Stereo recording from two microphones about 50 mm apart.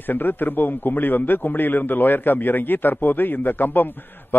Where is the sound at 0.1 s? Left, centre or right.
Left.